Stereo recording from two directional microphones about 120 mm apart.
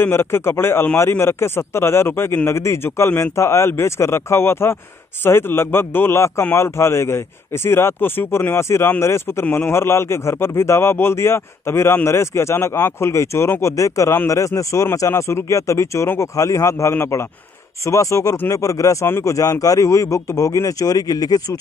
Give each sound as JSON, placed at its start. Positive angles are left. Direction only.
{"t": 0.0, "sound": "a man's voice", "side_deg": 20}